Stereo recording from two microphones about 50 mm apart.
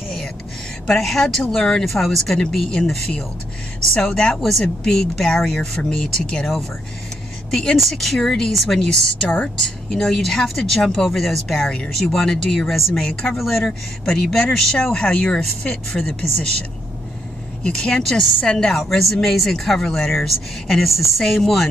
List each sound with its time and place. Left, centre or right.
0.8 s a woman's voice: centre
4.4 s a woman's voice: centre
4.8 s speech: centre
7.7 s speech: centre
11.1 s speech: centre
13.0 s speech: centre
13.4 s speech: centre
17.6 s speech: centre